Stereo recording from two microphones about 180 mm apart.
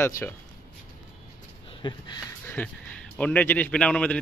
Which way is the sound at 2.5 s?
10° left (ahead or behind).